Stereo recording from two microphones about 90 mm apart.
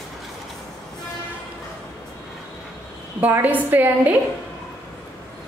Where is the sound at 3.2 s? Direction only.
20° right (ahead or behind).